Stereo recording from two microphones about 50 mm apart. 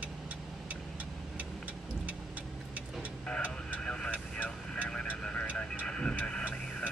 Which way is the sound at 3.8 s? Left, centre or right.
Centre.